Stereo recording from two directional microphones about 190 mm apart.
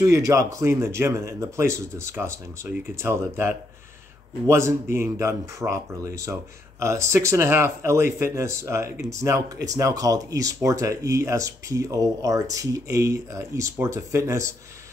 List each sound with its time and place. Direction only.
0.0 s speech: 15° right (ahead or behind)